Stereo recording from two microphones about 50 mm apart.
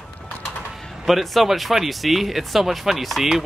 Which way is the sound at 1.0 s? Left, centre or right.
Centre.